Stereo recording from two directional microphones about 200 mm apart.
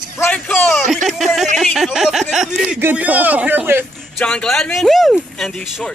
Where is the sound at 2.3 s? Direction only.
Centre (ahead or behind).